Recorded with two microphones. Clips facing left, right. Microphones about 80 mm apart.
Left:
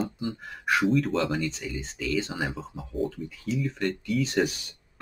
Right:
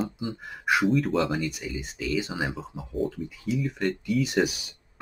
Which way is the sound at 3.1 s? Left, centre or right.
Centre.